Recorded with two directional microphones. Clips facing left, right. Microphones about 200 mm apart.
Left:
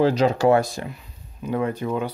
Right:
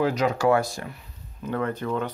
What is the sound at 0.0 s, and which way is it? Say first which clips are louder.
Speech: left 4 dB; 30° left (ahead or behind).